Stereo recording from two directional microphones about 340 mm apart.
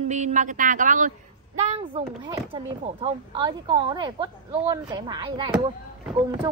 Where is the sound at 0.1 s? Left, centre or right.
Right.